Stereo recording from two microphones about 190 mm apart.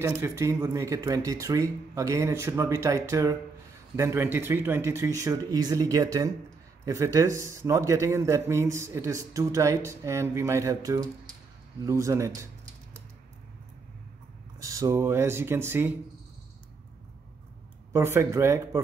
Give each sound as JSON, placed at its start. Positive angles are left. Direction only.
{"t": 0.0, "sound": "speech", "side_deg": -15}
{"t": 14.6, "sound": "speech", "side_deg": -15}
{"t": 17.9, "sound": "speech", "side_deg": -15}